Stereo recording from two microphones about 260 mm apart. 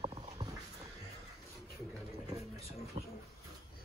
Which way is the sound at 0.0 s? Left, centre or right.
Centre.